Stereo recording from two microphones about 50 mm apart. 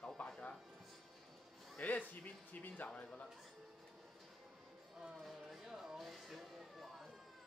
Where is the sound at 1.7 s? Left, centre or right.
Left.